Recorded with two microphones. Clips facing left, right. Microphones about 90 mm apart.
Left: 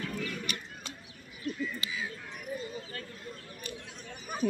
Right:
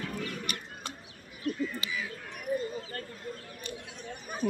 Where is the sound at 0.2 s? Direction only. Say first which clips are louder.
Even; 50° right (ahead or behind).